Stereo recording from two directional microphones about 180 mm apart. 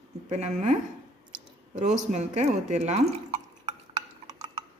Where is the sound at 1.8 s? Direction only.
40° right (ahead or behind).